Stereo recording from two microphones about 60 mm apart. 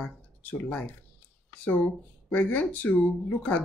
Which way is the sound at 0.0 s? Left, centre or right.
Left.